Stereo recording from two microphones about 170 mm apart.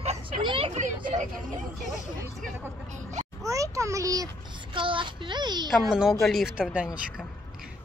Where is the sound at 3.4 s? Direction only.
20° right (ahead or behind).